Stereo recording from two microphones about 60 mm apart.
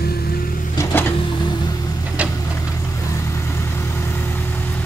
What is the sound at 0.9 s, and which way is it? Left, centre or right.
Printer, left.